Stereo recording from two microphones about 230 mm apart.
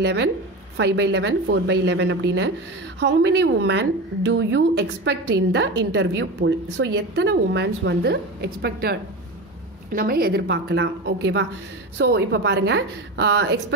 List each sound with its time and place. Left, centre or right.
0.0 s a woman's voice: right
9.9 s a woman's voice: right